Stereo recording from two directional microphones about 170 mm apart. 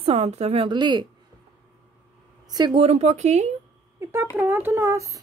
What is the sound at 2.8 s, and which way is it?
Speech, 40° right (ahead or behind).